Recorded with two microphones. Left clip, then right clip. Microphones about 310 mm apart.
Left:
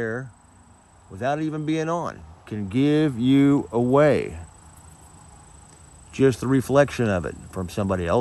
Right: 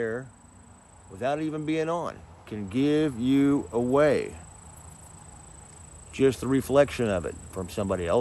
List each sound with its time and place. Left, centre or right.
0.0 s speech: left
6.1 s speech: left